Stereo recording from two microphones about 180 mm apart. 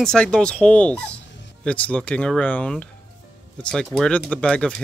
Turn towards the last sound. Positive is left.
turn(degrees=5)  # may be behind; listen again after turning